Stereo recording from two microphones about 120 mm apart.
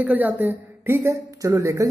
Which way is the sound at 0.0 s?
15° right (ahead or behind).